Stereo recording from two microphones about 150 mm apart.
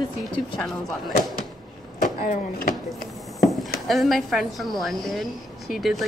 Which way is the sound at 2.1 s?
75° left (ahead or behind).